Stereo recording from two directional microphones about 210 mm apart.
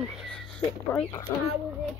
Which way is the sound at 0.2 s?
Centre (ahead or behind).